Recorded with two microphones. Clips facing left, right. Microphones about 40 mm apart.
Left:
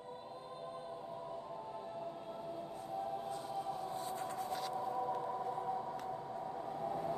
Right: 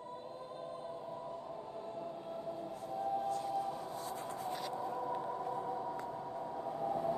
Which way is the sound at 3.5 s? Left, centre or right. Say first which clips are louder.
Right 4 dB; centre.